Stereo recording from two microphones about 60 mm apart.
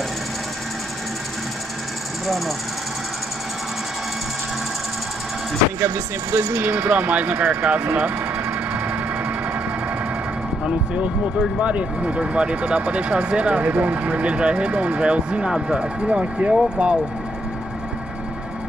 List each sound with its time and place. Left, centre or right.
2.2 s speech: centre
5.8 s speech: right
10.6 s speech: centre